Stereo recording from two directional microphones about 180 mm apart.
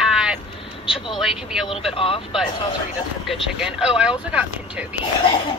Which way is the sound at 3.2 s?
5° right (ahead or behind).